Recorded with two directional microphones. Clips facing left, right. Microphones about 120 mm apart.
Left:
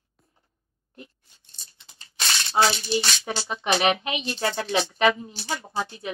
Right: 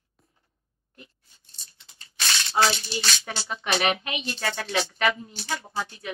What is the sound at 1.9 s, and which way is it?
Speech, 25° left (ahead or behind).